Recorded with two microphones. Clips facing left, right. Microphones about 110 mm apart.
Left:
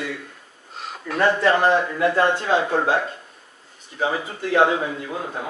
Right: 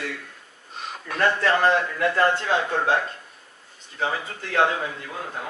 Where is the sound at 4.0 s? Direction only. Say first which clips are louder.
Left 3 dB; 15° left (ahead or behind).